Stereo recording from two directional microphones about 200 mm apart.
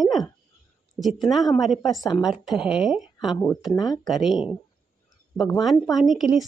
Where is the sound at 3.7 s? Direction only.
20° left (ahead or behind).